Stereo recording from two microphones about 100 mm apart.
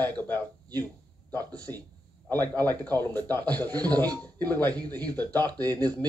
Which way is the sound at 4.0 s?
20° left (ahead or behind).